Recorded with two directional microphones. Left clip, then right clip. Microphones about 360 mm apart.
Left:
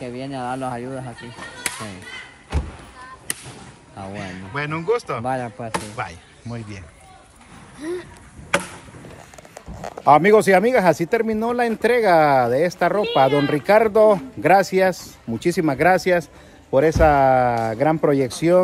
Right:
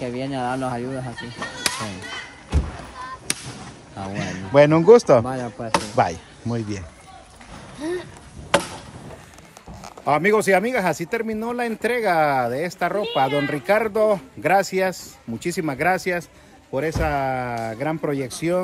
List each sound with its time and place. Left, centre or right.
0.0 s a man's voice: centre
4.1 s a man's voice: centre
5.2 s speech: centre
5.7 s speech: centre
7.8 s speech: right
10.0 s a man's voice: centre